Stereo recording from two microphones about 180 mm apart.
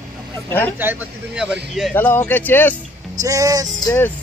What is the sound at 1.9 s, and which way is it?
Speech, 10° left (ahead or behind).